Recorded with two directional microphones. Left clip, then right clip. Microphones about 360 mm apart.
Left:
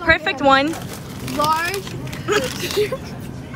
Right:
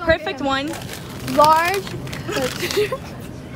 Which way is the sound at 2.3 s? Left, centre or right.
Centre.